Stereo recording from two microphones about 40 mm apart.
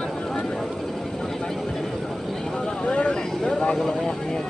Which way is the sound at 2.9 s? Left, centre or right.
Left.